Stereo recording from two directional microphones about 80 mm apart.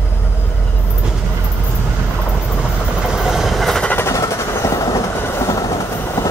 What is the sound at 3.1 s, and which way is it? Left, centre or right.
Train, centre.